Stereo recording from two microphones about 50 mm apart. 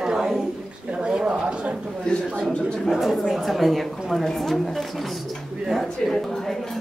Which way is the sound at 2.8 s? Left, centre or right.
Centre.